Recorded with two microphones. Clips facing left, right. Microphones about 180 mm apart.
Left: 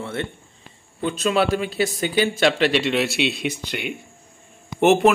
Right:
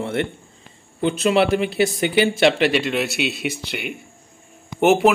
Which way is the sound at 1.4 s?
60° right (ahead or behind).